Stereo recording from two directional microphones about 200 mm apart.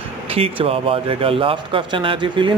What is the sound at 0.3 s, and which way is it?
Speech, 30° right (ahead or behind).